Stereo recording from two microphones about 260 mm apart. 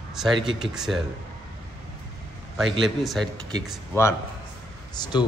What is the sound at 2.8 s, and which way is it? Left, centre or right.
A man's voice, centre.